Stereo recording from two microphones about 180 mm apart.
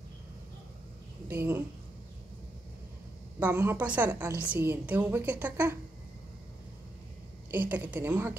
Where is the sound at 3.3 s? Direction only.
10° right (ahead or behind).